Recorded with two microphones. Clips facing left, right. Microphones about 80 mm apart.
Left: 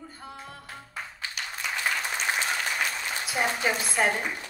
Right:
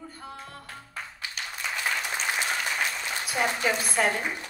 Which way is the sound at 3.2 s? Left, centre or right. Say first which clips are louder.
Right 1 dB; left.